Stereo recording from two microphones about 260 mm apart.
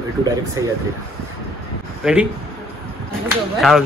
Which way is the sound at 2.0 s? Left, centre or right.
Centre.